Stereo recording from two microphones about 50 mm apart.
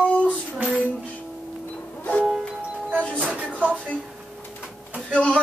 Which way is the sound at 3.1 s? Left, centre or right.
Right.